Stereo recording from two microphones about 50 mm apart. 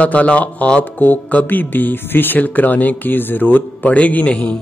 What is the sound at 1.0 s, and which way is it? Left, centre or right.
Speech, left.